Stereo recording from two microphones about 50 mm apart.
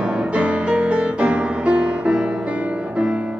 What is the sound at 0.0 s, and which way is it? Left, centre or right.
Music, right.